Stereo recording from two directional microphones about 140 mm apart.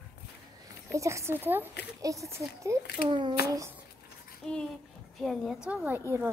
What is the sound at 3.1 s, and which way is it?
Speech, 30° right (ahead or behind).